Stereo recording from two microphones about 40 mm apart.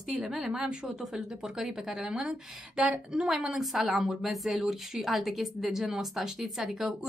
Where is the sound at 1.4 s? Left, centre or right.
Centre.